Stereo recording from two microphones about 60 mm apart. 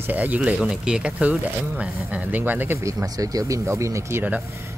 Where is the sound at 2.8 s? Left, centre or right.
Right.